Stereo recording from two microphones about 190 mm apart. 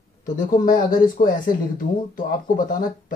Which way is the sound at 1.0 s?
45° left (ahead or behind).